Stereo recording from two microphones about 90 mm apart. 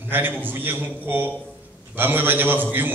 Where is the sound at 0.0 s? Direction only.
25° right (ahead or behind).